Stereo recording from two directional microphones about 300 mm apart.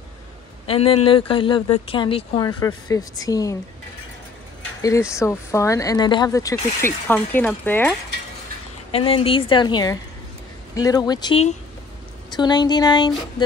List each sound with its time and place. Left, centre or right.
0.7 s speech: centre
4.8 s speech: centre
8.9 s speech: centre